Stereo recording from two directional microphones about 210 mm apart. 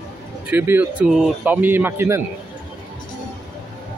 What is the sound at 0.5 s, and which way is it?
A man's voice, 10° right (ahead or behind).